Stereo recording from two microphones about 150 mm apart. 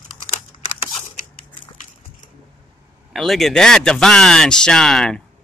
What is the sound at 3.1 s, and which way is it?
Speech, centre (ahead or behind).